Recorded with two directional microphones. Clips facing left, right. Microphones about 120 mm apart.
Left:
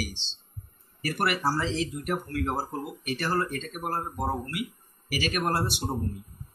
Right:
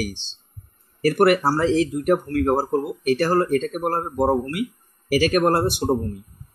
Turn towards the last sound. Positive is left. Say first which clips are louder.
# right 9 dB
turn(degrees=-45)  # may be behind; listen again after turning